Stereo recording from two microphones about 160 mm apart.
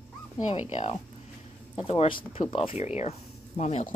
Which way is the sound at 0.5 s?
45° left (ahead or behind).